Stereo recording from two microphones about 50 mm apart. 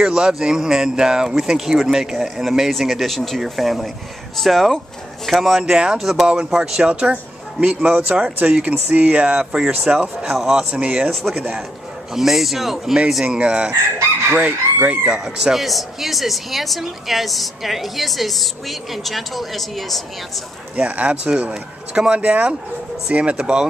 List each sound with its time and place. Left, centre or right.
0.0 s a man's voice: centre
5.6 s a man's voice: centre
5.9 s a woman's voice: centre
6.2 s a man's voice: centre
8.7 s a man's voice: right; by 10.7 s centre
10.7 s speech: right
11.1 s a woman's voice: centre
13.4 s speech: right
15.1 s a woman's voice: centre
20.7 s speech: right